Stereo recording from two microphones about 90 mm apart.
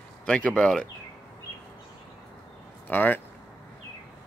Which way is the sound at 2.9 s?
20° left (ahead or behind).